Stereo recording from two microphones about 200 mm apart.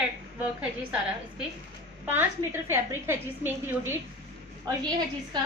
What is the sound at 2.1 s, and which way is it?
A woman's voice, 10° right (ahead or behind).